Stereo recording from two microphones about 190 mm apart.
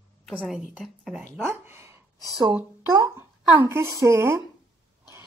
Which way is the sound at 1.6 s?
10° right (ahead or behind).